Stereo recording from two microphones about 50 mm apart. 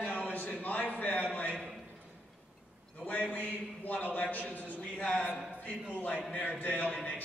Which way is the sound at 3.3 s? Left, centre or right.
Left.